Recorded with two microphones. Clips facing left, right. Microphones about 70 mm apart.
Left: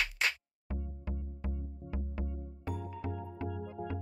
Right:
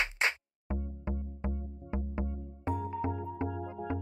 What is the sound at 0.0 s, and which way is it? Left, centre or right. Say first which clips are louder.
Music: right 2 dB; right.